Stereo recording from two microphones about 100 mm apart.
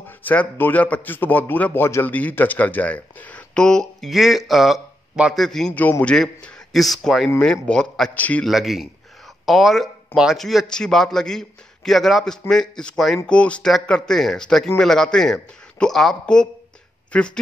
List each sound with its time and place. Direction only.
0.2 s a man's voice: 15° left (ahead or behind)
5.8 s a man's voice: 20° left (ahead or behind)
6.1 s a man's voice: 5° left (ahead or behind)
8.5 s a man's voice: centre (ahead or behind)